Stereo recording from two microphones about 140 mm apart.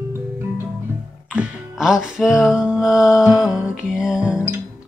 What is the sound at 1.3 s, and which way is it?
Music, 5° right (ahead or behind).